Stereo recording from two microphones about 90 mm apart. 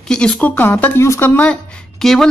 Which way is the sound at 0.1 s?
10° left (ahead or behind).